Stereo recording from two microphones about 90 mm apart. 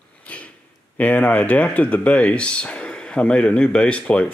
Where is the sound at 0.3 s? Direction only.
15° left (ahead or behind).